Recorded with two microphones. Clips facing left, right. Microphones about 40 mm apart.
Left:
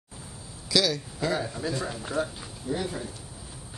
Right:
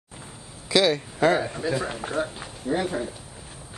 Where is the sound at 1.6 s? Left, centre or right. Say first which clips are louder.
Right 4 dB; centre.